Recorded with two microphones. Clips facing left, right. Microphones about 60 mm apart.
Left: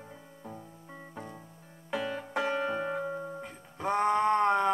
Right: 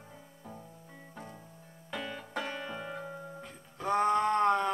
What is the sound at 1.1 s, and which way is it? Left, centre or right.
Music, centre.